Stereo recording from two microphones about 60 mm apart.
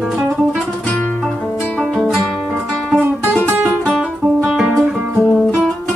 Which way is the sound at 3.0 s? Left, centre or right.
Right.